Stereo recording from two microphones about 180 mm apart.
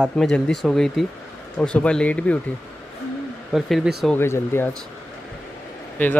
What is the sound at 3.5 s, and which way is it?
Speech, centre (ahead or behind).